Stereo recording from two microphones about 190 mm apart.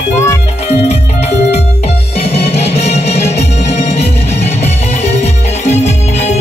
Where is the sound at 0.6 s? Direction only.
35° left (ahead or behind).